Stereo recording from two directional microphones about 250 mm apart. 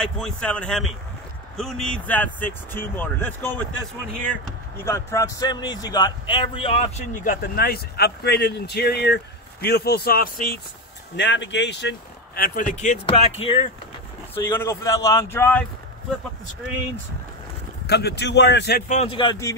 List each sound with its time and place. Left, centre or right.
0.0 s speech: centre
4.8 s speech: centre; by 10.5 s left
11.1 s speech: left
12.4 s speech: left
14.3 s speech: centre
17.8 s speech: left; by 19.5 s centre